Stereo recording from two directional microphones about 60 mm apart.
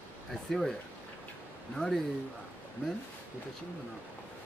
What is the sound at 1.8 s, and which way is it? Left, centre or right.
Speech, centre.